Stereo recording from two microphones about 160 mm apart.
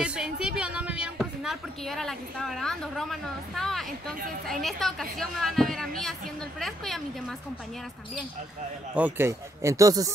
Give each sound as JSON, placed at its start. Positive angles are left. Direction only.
{"t": 0.0, "sound": "a sound", "side_deg": -5}
{"t": 4.6, "sound": "a woman's voice", "side_deg": 0}
{"t": 8.9, "sound": "speech", "side_deg": -10}